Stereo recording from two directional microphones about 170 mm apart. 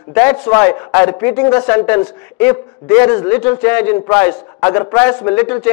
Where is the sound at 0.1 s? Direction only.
10° left (ahead or behind).